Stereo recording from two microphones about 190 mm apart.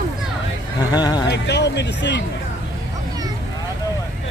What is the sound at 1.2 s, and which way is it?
Speech, 65° left (ahead or behind).